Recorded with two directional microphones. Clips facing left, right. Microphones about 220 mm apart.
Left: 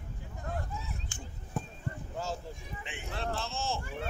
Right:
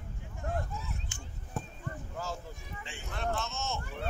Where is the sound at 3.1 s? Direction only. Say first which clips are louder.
Right 1 dB; 30° left (ahead or behind).